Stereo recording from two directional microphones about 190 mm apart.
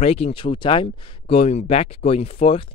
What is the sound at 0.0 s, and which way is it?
Speech, 30° left (ahead or behind).